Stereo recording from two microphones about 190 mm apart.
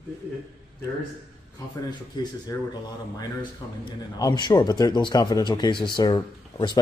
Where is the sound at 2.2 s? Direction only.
20° left (ahead or behind).